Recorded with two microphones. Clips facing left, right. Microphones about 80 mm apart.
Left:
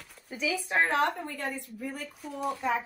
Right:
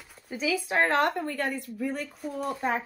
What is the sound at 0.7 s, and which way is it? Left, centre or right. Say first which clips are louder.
Speech: right 2 dB; right.